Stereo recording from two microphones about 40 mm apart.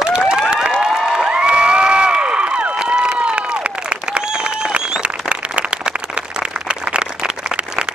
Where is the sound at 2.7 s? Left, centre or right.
Right.